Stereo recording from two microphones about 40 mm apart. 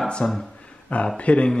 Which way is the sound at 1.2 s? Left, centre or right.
Left.